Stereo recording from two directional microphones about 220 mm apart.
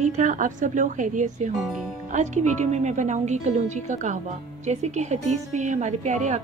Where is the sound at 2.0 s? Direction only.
35° right (ahead or behind).